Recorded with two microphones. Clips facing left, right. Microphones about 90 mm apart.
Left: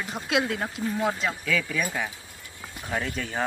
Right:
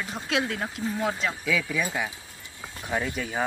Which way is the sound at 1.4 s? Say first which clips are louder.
Right 1 dB; 10° right (ahead or behind).